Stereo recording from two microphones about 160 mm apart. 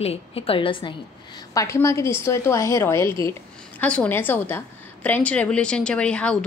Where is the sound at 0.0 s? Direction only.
35° left (ahead or behind).